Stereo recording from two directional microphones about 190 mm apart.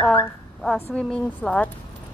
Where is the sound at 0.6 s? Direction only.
5° left (ahead or behind).